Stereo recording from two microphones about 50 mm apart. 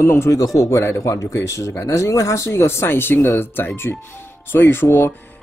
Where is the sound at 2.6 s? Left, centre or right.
Left.